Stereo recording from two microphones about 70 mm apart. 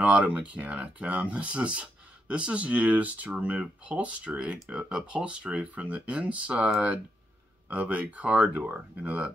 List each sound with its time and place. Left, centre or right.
0.0 s speech: centre